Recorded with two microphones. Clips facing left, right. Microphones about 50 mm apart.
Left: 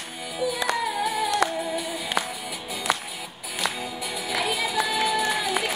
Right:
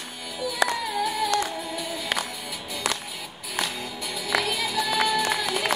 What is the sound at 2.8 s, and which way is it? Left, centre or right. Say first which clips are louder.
Music: left 3 dB; right.